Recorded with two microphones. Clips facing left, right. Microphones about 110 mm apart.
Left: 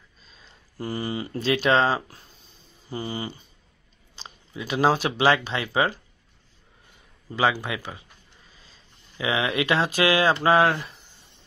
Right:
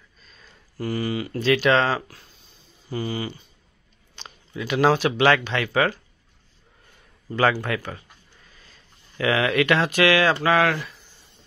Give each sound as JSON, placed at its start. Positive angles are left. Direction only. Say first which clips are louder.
{"t": 0.5, "sound": "speech", "louder": "right 3 dB", "side_deg": 20}
{"t": 4.6, "sound": "speech", "louder": "right 2 dB", "side_deg": 35}
{"t": 7.3, "sound": "speech", "louder": "right 2 dB", "side_deg": 10}
{"t": 9.2, "sound": "speech", "louder": "right 4 dB", "side_deg": 20}
{"t": 9.7, "sound": "speech", "louder": "even", "side_deg": 35}